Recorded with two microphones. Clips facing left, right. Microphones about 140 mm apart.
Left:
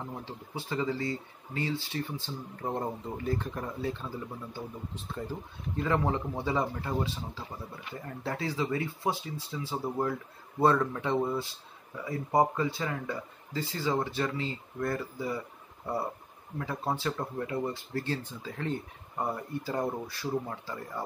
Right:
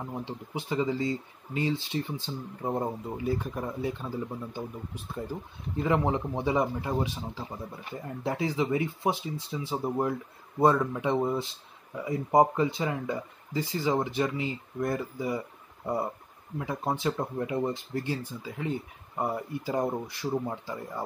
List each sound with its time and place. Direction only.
0.0 s speech: 15° right (ahead or behind)
16.5 s speech: 15° right (ahead or behind)